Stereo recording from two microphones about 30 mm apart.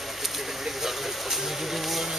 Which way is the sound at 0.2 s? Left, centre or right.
Centre.